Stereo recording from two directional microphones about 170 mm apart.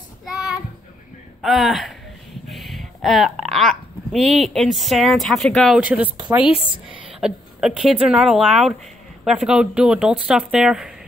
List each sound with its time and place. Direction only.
0.2 s child singing: 5° right (ahead or behind)
1.4 s speech: centre (ahead or behind)